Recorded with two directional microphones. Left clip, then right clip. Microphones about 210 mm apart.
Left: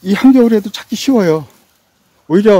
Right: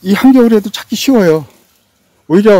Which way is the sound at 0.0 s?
15° right (ahead or behind).